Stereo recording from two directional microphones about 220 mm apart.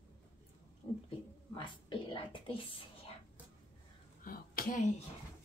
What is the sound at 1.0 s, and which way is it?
Speech, 20° left (ahead or behind).